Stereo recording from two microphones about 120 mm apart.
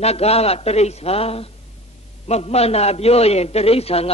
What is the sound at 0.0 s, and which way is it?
A man's voice, 60° left (ahead or behind).